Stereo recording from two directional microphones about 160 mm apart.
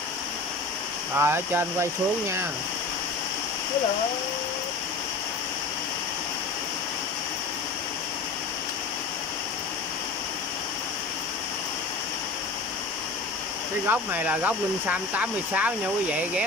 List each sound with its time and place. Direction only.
1.1 s speech: 15° right (ahead or behind)
13.8 s speech: 10° right (ahead or behind)